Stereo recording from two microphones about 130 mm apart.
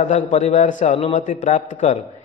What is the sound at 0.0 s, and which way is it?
A man's voice, 60° left (ahead or behind).